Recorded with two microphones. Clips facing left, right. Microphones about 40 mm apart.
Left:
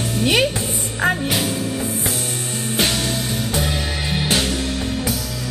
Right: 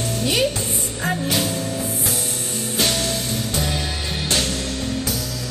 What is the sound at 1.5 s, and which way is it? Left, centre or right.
Music, centre.